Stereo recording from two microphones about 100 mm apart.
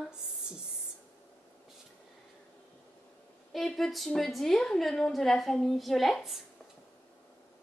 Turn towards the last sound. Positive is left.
turn(degrees=0)  # may be behind; listen again after turning